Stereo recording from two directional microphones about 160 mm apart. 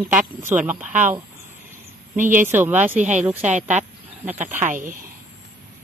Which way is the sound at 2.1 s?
50° right (ahead or behind).